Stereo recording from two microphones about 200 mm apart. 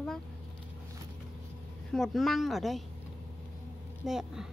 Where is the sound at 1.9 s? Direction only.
Centre (ahead or behind).